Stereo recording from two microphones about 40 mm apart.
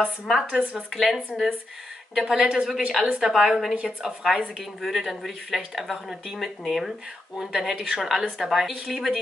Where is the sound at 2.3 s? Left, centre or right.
Centre.